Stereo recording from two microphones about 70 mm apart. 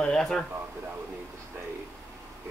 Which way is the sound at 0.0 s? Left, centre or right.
Centre.